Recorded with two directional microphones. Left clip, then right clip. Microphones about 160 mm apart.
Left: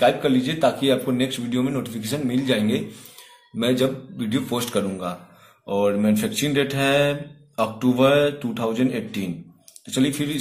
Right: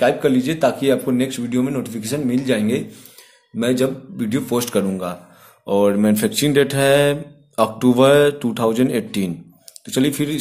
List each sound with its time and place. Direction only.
0.0 s speech: 45° right (ahead or behind)